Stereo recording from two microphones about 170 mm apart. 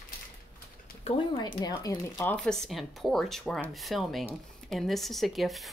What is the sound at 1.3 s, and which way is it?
Speech, 25° left (ahead or behind).